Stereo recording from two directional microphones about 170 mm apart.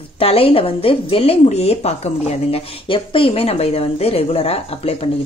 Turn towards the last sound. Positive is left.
turn(degrees=35)  # may be behind; listen again after turning